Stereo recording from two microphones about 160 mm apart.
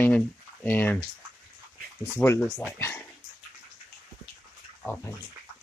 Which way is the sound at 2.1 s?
15° left (ahead or behind).